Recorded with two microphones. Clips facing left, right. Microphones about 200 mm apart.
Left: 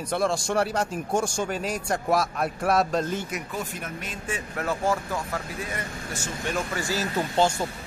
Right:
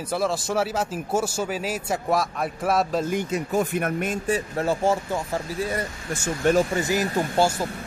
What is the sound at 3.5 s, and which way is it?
Speech, 55° right (ahead or behind).